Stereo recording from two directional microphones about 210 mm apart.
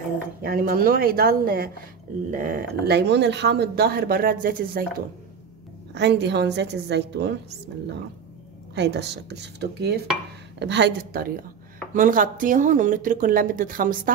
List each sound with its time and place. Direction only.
0.4 s speech: 45° right (ahead or behind)
5.9 s a woman's voice: 55° right (ahead or behind)
8.7 s speech: 55° right (ahead or behind)